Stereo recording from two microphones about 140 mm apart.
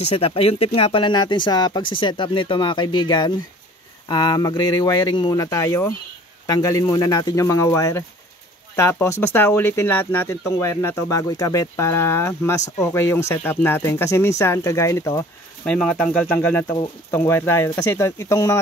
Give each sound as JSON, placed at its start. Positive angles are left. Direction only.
{"t": 0.0, "sound": "speech", "side_deg": 45}
{"t": 15.6, "sound": "speech", "side_deg": 10}